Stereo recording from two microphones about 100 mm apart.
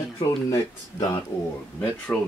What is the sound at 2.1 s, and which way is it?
Speech, 15° left (ahead or behind).